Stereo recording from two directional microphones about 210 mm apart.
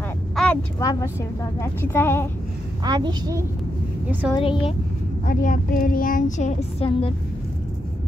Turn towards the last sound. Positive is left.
turn(degrees=30)  # may be behind; listen again after turning